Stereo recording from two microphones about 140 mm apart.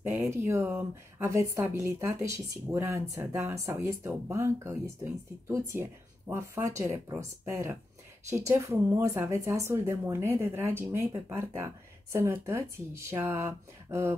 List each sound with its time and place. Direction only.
0.0 s speech: 20° right (ahead or behind)